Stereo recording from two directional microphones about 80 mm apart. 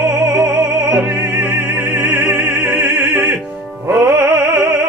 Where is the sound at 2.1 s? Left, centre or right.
Centre.